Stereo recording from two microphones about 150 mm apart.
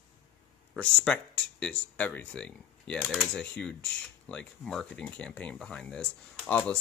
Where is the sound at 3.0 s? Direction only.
5° right (ahead or behind).